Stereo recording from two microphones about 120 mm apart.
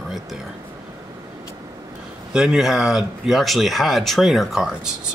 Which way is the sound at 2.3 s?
5° right (ahead or behind).